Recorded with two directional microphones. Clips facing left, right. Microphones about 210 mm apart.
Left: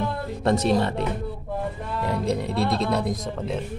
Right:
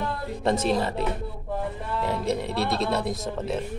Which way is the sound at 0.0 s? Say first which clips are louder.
Left 2 dB; centre (ahead or behind).